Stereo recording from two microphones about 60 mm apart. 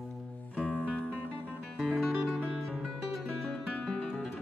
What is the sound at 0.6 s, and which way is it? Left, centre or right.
Music, left.